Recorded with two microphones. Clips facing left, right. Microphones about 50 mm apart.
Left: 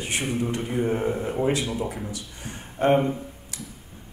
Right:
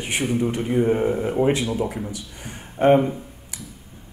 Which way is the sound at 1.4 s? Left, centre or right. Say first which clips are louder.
Right 4 dB; right.